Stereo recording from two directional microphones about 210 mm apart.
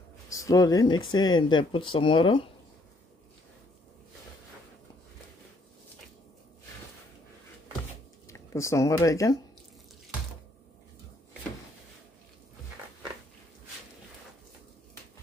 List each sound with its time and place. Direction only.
0.3 s speech: 15° left (ahead or behind)
8.3 s speech: 15° left (ahead or behind)